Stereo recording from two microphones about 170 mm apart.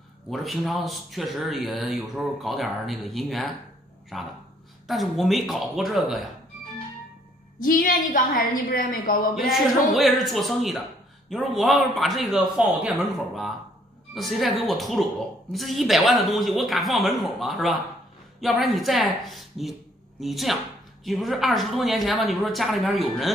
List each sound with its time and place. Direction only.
0.3 s speech: centre (ahead or behind)
7.5 s a woman's voice: 55° left (ahead or behind)
9.3 s speech: centre (ahead or behind)